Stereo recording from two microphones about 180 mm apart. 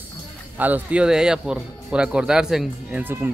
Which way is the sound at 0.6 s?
10° right (ahead or behind).